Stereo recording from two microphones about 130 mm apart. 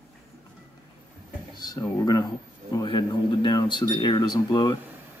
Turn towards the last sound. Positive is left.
turn(degrees=35)  # may be behind; listen again after turning